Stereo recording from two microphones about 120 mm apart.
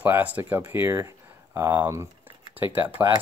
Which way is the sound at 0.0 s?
15° right (ahead or behind).